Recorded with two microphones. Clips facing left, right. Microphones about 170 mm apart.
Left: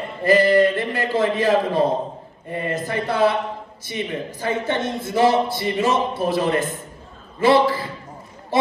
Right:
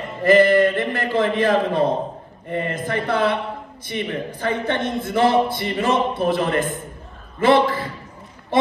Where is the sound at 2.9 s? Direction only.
50° right (ahead or behind).